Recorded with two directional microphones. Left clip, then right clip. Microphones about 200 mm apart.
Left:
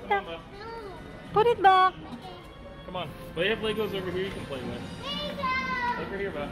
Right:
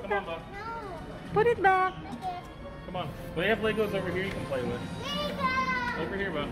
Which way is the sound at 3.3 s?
30° right (ahead or behind).